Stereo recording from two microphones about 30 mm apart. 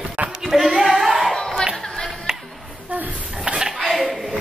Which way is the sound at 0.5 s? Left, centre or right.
Centre.